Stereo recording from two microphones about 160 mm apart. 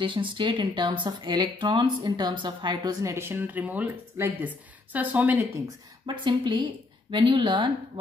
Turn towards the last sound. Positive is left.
turn(degrees=-30)  # may be behind; listen again after turning